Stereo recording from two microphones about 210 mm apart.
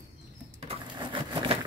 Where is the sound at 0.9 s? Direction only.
25° right (ahead or behind).